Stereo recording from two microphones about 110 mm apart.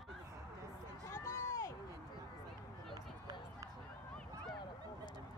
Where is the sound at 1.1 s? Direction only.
25° left (ahead or behind).